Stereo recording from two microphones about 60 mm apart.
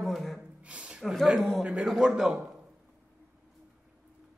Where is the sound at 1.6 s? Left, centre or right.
Right.